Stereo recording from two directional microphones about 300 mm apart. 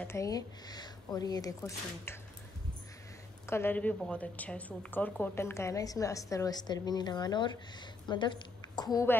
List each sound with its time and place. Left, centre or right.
0.0 s a woman's voice: centre
3.4 s a woman's voice: centre